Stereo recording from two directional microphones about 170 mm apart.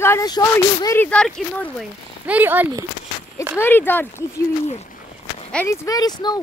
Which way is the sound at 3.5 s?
10° left (ahead or behind).